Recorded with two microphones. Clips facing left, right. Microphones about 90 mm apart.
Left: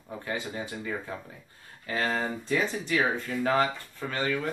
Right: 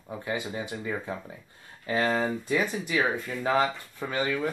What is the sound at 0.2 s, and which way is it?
Speech, 15° right (ahead or behind).